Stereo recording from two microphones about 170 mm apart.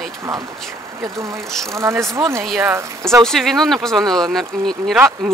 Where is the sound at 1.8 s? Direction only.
15° right (ahead or behind).